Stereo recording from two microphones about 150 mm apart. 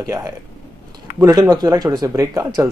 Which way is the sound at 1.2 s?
20° right (ahead or behind).